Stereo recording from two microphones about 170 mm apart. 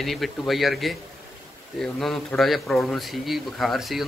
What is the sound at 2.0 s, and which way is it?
Speech, centre (ahead or behind).